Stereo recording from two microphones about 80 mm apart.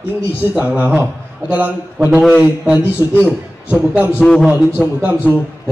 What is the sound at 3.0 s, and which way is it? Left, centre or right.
Speech, left.